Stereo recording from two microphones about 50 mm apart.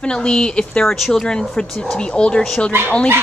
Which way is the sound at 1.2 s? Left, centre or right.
Centre.